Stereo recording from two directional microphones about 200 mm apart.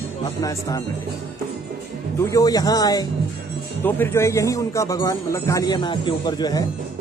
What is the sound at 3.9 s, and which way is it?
Speech, 10° left (ahead or behind).